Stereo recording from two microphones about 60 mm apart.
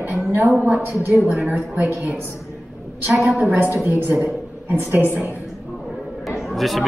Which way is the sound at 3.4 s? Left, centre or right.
Right.